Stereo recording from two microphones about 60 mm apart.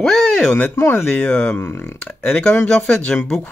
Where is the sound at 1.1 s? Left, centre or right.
Centre.